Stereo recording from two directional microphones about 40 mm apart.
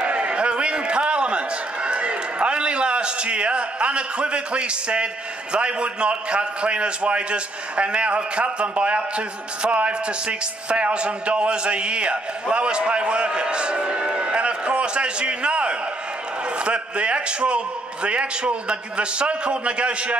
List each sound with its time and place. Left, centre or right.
0.0 s a man's voice: right